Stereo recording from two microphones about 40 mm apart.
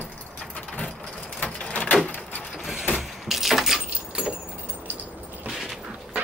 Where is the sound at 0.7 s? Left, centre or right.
Left.